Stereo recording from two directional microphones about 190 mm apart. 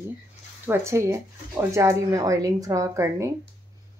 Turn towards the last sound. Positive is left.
turn(degrees=-15)  # may be behind; listen again after turning